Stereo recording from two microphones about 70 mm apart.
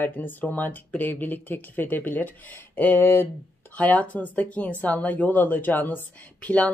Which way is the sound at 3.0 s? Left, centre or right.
Left.